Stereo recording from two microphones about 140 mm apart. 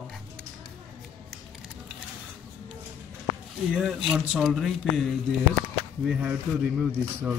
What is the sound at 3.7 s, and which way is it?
A man's voice, 5° right (ahead or behind).